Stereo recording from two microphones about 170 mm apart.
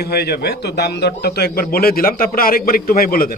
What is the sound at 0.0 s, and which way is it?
A man's voice, 70° left (ahead or behind).